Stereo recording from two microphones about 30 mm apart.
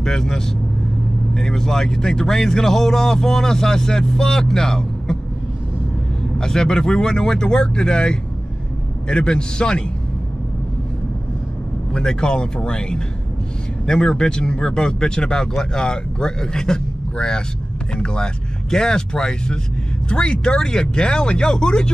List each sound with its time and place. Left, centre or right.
0.0 s a man's voice: left
6.3 s a man's voice: left
12.0 s a man's voice: left